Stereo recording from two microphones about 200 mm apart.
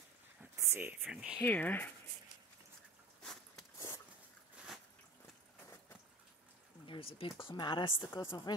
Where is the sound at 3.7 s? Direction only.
15° left (ahead or behind).